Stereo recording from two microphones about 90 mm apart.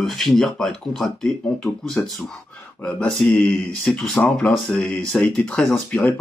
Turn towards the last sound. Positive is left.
turn(degrees=10)  # may be behind; listen again after turning